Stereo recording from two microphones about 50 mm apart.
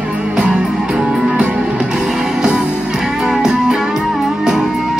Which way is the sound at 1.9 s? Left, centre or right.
Centre.